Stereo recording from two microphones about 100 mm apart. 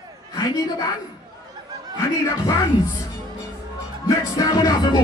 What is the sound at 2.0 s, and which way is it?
Speech, 35° left (ahead or behind).